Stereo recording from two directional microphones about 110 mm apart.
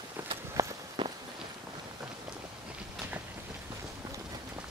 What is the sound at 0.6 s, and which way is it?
Walk, 30° right (ahead or behind).